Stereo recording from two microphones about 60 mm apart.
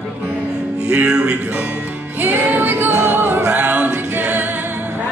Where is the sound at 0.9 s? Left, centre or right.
Centre.